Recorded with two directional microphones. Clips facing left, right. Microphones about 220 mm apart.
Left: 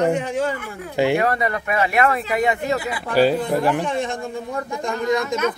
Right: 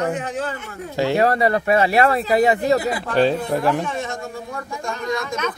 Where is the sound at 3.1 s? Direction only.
Centre (ahead or behind).